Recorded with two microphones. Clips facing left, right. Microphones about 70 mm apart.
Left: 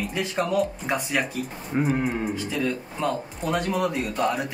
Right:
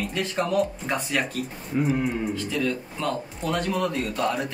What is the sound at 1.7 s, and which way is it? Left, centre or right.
Speech, left.